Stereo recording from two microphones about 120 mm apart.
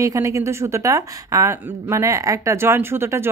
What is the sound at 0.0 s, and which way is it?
Speech, 25° right (ahead or behind).